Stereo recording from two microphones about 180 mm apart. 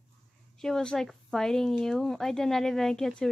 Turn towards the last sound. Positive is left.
turn(degrees=5)  # may be behind; listen again after turning